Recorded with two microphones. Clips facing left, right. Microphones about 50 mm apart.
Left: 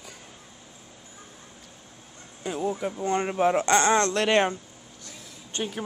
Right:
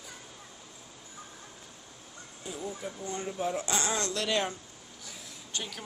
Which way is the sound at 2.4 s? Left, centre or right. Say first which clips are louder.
Left 10 dB; left.